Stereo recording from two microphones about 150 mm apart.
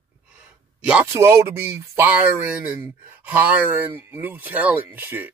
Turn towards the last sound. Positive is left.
turn(degrees=-10)  # may be behind; listen again after turning